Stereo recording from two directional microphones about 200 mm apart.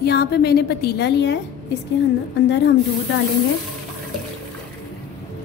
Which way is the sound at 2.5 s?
60° left (ahead or behind).